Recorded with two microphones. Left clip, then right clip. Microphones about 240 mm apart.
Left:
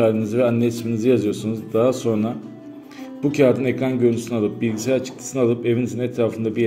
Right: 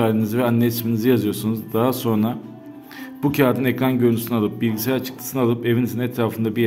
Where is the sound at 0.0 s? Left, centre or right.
Right.